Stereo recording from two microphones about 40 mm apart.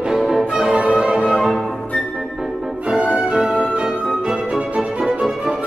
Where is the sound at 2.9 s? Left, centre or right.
Right.